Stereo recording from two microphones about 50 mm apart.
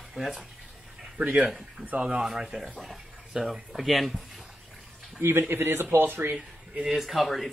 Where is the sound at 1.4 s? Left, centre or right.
Centre.